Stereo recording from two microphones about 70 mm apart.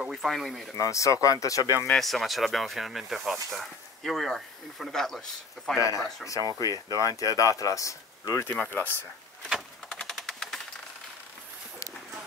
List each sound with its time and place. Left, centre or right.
0.1 s speech: centre
0.7 s speech: left
1.6 s speech: right
2.0 s speech: centre
5.8 s speech: left
8.5 s speech: left
9.8 s typewriter: centre